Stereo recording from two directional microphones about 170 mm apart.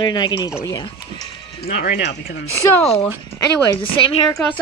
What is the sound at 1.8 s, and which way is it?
Speech, 90° left.